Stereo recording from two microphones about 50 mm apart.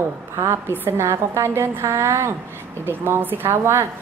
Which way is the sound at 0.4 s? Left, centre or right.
Right.